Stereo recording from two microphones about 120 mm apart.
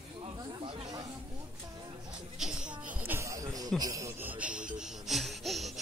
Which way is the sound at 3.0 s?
20° right (ahead or behind).